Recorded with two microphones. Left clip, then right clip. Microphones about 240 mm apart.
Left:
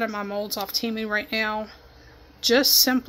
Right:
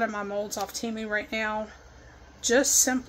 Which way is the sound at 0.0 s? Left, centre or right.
Centre.